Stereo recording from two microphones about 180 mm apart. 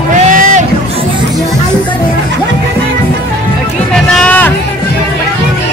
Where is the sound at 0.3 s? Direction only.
45° right (ahead or behind).